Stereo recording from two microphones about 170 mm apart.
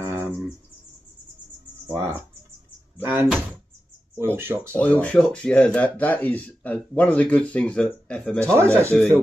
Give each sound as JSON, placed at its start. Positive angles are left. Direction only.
{"t": 0.0, "sound": "cricket", "side_deg": -10}
{"t": 1.9, "sound": "speech", "side_deg": -15}
{"t": 5.0, "sound": "speech", "side_deg": 5}
{"t": 8.5, "sound": "speech", "side_deg": -15}
{"t": 8.9, "sound": "speech", "side_deg": 5}